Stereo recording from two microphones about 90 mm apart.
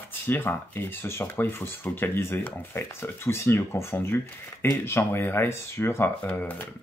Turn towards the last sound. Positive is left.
turn(degrees=20)  # may be behind; listen again after turning